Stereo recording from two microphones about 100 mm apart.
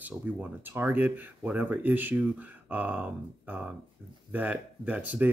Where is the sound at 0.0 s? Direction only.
20° right (ahead or behind).